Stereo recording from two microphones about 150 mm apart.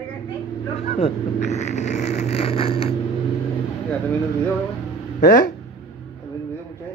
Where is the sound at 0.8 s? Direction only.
45° left (ahead or behind).